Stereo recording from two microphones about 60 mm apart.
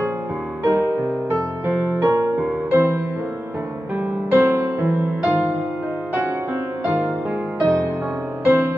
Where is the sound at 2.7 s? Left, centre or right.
Right.